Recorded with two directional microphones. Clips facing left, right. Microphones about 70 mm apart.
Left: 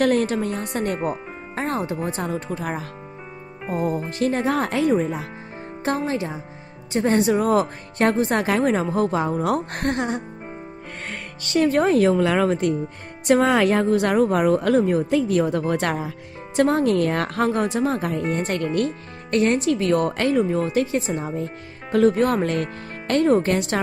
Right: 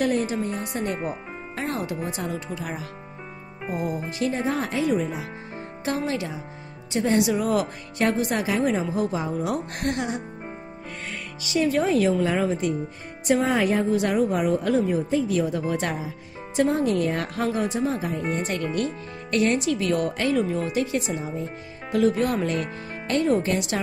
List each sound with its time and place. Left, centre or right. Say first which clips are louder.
0.0 s a woman's voice: left 4 dB; left
0.6 s speech: left 3 dB; left
1.5 s music: left 4 dB; left
2.1 s a woman's voice: left 4 dB; left
4.2 s speech: left 4 dB; left
4.9 s a woman's voice: left 4 dB; left
11.1 s speech: left 1 dB; left
12.2 s a woman's voice: left 4 dB; left
13.3 s a woman's voice: left 4 dB; left
18.3 s a woman's voice: left 3 dB; left
20.3 s a woman's voice: left 4 dB; left